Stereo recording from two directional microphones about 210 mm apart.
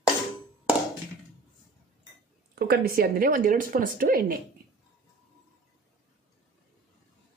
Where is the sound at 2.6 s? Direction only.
50° right (ahead or behind).